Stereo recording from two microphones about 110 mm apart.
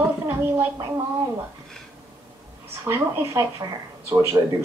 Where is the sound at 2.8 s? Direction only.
25° right (ahead or behind).